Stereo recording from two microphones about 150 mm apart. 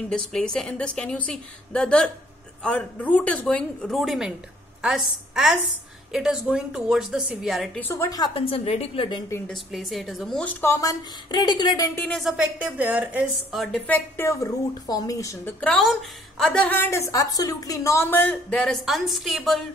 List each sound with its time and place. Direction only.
0.1 s a woman's voice: 5° left (ahead or behind)
7.8 s a woman's voice: 20° left (ahead or behind)
8.4 s a woman's voice: 40° left (ahead or behind)
9.5 s a woman's voice: centre (ahead or behind)
10.6 s a woman's voice: 20° left (ahead or behind)
12.0 s a woman's voice: centre (ahead or behind)
13.8 s a woman's voice: 15° left (ahead or behind)
15.6 s a woman's voice: 5° left (ahead or behind)